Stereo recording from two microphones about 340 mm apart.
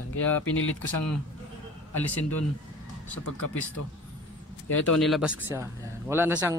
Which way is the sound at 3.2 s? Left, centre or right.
Left.